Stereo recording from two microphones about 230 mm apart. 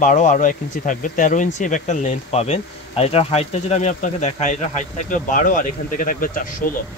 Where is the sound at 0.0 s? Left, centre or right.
Left.